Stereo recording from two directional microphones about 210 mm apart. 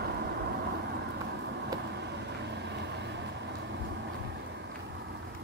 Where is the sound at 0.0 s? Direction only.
50° right (ahead or behind).